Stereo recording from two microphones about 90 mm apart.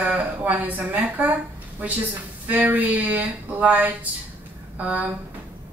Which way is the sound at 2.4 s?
20° right (ahead or behind).